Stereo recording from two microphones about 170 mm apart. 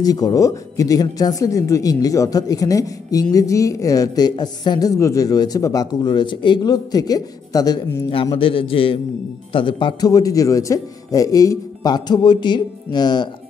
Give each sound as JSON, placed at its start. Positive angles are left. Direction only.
{"t": 0.0, "sound": "a man's voice", "side_deg": 20}